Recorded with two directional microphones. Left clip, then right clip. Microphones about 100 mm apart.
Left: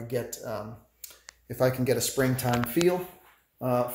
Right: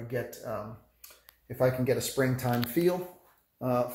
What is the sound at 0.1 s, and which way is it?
Speech, 10° left (ahead or behind).